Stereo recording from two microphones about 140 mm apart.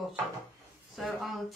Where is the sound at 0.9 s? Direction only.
Centre (ahead or behind).